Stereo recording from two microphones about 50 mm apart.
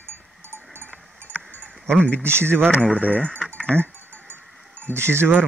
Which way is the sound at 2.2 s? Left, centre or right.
Right.